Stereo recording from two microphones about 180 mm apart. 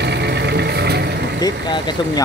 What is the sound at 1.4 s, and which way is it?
Speech, 25° left (ahead or behind).